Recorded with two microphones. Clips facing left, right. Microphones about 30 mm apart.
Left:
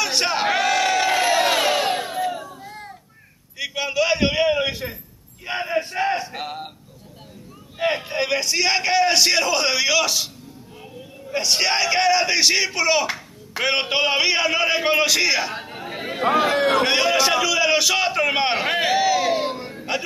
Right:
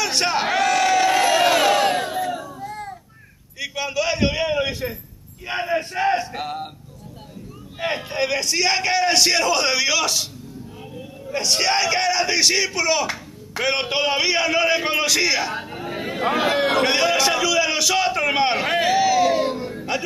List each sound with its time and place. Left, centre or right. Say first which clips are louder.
0.0 s crowd: even; centre
3.5 s a sound: left 2 dB; centre
5.4 s speech: right 1 dB; centre
7.8 s a man's voice: left 1 dB; centre
11.3 s speech: even; centre
15.5 s chatter: right 2 dB; centre
15.8 s a sound: right 2 dB; centre
16.3 s a man's voice: left 1 dB; centre
16.7 s a sound: even; centre; by 19.7 s left
19.7 s music: right 1 dB; centre